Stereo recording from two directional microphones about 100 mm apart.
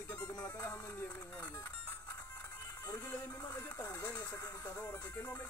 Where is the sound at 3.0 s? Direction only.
25° left (ahead or behind).